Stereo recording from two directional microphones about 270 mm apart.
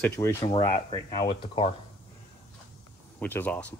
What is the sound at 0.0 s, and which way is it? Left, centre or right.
Speech, centre.